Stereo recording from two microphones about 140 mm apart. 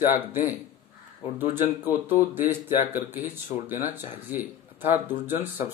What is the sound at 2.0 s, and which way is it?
Speech, 15° right (ahead or behind).